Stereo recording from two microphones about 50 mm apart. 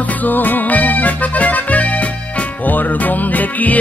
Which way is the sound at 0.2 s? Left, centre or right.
Left.